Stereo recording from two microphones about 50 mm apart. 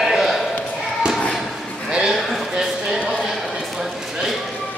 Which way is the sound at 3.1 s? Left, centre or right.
Centre.